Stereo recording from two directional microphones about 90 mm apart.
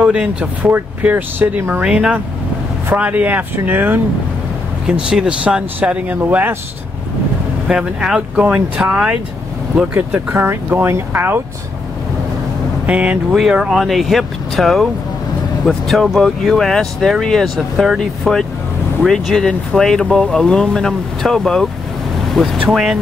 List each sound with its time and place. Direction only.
0.0 s speech: 10° right (ahead or behind)
4.8 s speech: 10° right (ahead or behind)
7.6 s speech: 10° right (ahead or behind); by 11.3 s 25° right (ahead or behind)
12.8 s speech: 15° right (ahead or behind)